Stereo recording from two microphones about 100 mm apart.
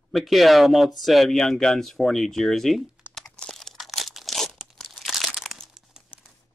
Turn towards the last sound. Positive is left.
turn(degrees=0)  # may be behind; listen again after turning